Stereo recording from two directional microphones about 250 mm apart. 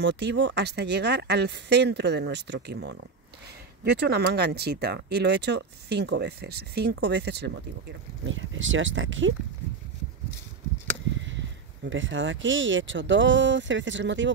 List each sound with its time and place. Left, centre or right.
0.0 s speech: right
11.1 s speech: right